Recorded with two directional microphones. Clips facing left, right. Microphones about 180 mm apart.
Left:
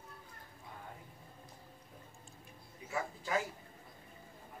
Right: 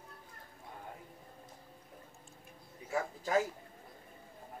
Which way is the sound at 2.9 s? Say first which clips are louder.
Right 4 dB; 40° right (ahead or behind).